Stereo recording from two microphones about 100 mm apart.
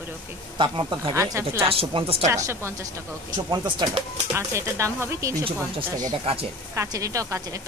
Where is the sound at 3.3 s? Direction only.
45° right (ahead or behind).